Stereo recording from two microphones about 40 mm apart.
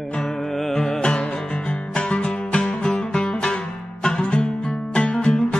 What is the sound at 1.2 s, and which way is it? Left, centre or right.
Music, left.